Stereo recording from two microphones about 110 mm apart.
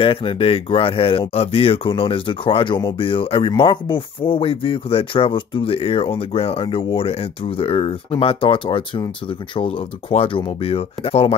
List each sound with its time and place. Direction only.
0.0 s speech: 50° left (ahead or behind)